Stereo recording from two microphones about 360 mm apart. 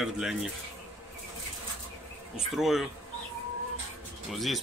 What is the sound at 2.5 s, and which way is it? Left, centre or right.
Speech, centre.